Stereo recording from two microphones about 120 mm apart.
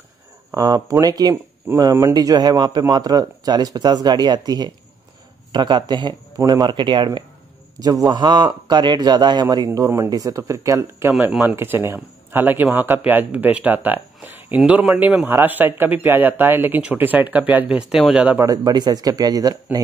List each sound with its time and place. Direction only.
0.6 s a man's voice: 30° right (ahead or behind)
9.7 s speech: 20° right (ahead or behind)
18.4 s a man's voice: 30° right (ahead or behind)